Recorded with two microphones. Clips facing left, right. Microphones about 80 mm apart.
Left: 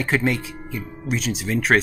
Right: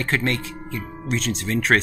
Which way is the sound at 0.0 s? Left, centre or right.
Centre.